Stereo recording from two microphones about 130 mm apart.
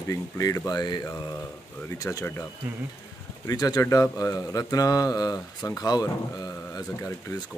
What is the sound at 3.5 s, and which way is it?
Speech, 30° left (ahead or behind).